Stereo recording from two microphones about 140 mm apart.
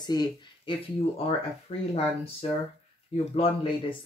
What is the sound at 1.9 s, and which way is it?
Speech, 45° left (ahead or behind).